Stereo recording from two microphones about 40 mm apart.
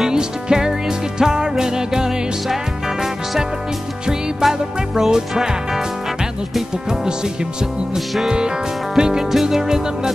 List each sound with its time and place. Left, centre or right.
0.0 s music: centre
4.4 s music: centre
7.9 s music: centre